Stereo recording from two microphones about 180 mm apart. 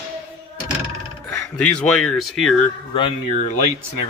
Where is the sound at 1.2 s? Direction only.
5° left (ahead or behind).